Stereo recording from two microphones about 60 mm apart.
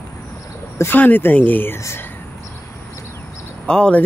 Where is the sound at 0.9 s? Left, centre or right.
Left.